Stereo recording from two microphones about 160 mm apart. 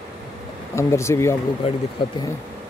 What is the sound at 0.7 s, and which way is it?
Speech, 15° left (ahead or behind).